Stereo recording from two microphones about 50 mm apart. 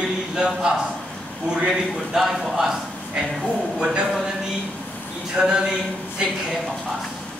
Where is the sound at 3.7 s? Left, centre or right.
Centre.